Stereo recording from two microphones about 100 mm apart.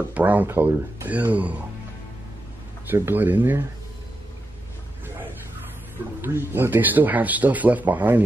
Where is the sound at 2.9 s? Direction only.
20° right (ahead or behind).